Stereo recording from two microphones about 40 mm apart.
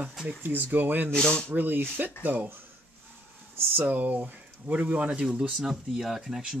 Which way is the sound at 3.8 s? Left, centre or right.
Right.